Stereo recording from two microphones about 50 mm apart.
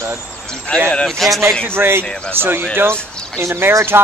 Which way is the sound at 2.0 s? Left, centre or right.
Centre.